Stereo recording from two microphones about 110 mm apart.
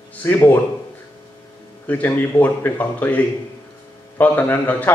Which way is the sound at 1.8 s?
15° left (ahead or behind).